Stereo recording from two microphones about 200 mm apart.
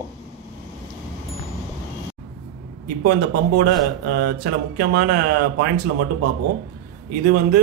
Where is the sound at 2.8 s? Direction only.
50° right (ahead or behind).